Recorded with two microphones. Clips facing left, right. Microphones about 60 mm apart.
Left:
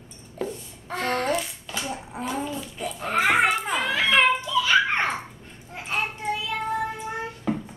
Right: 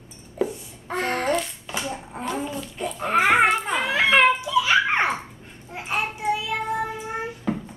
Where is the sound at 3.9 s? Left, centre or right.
Centre.